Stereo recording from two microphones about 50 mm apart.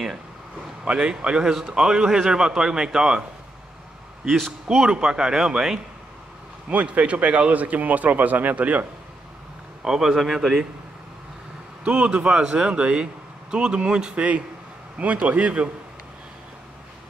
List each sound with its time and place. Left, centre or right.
0.8 s speech: centre
4.8 s speech: centre
6.7 s speech: right
9.8 s speech: centre
11.8 s speech: right
15.0 s speech: right